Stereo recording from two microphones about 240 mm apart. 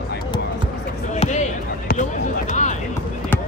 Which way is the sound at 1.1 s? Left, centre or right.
Left.